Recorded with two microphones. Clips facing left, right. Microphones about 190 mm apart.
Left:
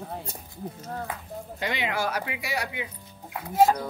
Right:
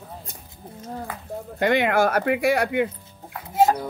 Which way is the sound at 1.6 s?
55° right (ahead or behind).